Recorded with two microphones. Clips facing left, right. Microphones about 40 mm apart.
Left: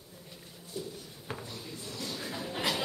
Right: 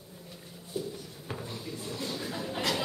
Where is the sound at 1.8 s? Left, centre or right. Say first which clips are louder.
Right 3 dB; centre.